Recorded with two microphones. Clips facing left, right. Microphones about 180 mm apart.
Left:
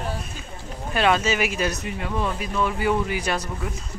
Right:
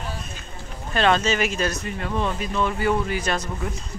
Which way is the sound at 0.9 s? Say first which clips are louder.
Right 1 dB; 10° left (ahead or behind).